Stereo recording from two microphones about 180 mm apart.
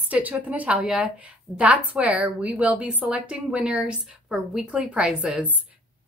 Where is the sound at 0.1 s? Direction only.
10° right (ahead or behind).